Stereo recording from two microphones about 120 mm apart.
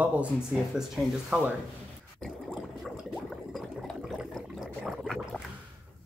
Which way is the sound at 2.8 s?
Centre (ahead or behind).